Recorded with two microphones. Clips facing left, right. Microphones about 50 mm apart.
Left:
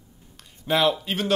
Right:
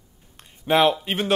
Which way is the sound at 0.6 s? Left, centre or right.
Right.